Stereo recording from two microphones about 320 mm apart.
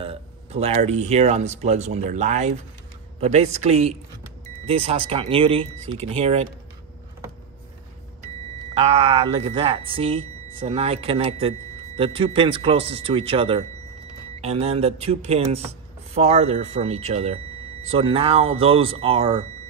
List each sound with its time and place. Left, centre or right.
0.0 s speech: centre
8.7 s speech: centre